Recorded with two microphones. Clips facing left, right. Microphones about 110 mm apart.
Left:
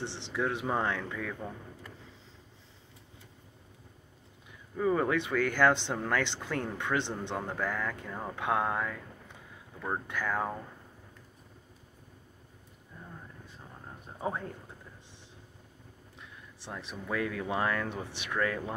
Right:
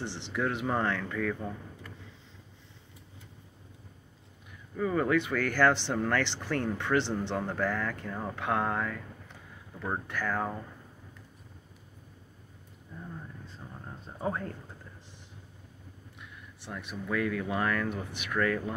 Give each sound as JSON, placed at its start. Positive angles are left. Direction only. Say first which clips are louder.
{"t": 0.0, "sound": "speech", "louder": "right 1 dB", "side_deg": 25}
{"t": 4.7, "sound": "speech", "louder": "right 1 dB", "side_deg": 20}
{"t": 10.0, "sound": "speech", "louder": "even", "side_deg": 15}
{"t": 16.2, "sound": "speech", "louder": "even", "side_deg": 30}